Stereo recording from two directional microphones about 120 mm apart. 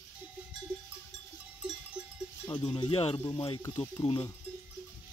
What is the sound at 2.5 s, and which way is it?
Speech, 40° left (ahead or behind).